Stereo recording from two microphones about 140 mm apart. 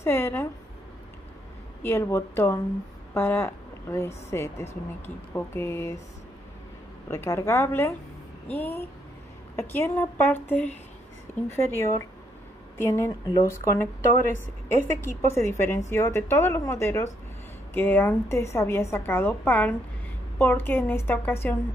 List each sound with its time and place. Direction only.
0.0 s a woman's voice: 15° left (ahead or behind)
1.8 s a woman's voice: 15° left (ahead or behind)
7.1 s a woman's voice: 20° left (ahead or behind)